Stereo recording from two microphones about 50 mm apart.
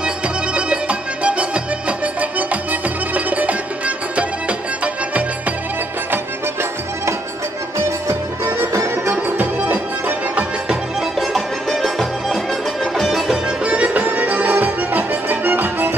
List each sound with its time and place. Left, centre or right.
0.6 s music: right
8.7 s music: right
9.1 s music: right
10.7 s music: centre
13.7 s music: right